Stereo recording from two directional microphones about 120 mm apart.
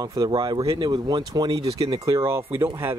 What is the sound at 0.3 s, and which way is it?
Speech, 45° right (ahead or behind).